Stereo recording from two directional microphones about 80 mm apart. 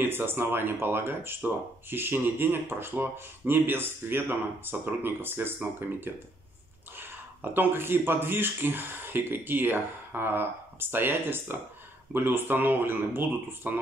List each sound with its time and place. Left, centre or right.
0.0 s speech: right